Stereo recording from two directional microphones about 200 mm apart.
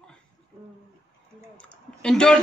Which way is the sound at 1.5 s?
5° left (ahead or behind).